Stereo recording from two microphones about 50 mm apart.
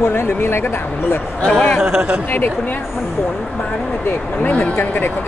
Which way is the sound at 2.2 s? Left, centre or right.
Left.